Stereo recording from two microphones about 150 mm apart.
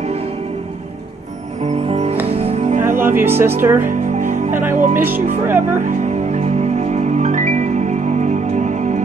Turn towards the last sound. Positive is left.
turn(degrees=-55)  # may be behind; listen again after turning